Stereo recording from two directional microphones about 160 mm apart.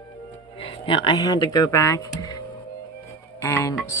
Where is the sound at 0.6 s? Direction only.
35° left (ahead or behind).